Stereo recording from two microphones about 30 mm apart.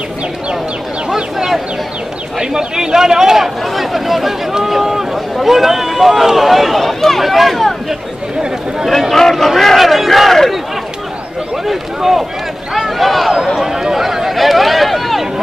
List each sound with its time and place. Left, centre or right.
1.1 s speech: right
3.7 s speech: centre
9.1 s a man's voice: centre
9.8 s battle cry: centre
11.6 s speech: centre
13.6 s speech: centre
14.3 s a sound: centre